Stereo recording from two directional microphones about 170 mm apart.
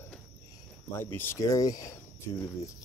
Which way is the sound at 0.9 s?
15° left (ahead or behind).